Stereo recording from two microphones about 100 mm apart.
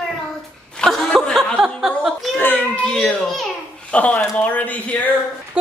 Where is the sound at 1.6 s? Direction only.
5° right (ahead or behind).